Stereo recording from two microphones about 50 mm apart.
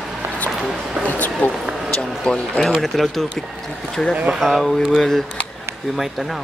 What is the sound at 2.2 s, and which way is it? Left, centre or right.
Speech, centre.